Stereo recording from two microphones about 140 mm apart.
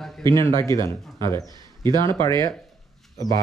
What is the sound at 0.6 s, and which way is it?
Speech, 30° right (ahead or behind).